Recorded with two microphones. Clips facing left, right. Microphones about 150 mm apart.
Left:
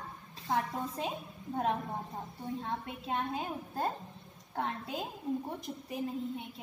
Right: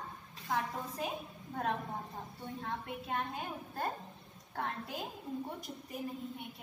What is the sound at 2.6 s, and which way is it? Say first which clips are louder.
A woman's voice: left 2 dB; 25° left (ahead or behind).